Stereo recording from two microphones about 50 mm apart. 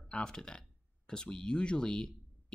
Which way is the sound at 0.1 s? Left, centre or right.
Centre.